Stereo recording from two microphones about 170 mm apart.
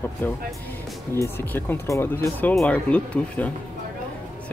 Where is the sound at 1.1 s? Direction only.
15° left (ahead or behind).